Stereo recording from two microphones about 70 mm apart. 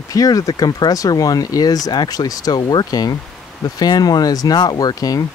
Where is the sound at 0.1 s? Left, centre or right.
Left.